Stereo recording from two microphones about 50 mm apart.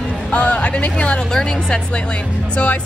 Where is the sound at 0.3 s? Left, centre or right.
Left.